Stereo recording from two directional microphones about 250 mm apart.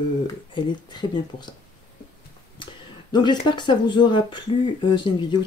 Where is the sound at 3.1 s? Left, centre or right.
Centre.